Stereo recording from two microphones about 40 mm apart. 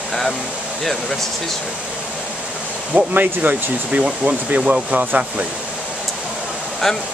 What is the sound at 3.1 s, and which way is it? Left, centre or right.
Speech, right.